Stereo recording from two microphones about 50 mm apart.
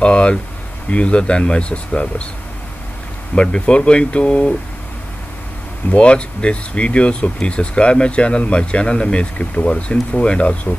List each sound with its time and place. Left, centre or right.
0.0 s speech: left
3.3 s speech: left
5.9 s speech: left